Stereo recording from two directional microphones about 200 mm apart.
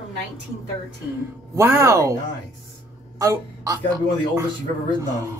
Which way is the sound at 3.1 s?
15° right (ahead or behind).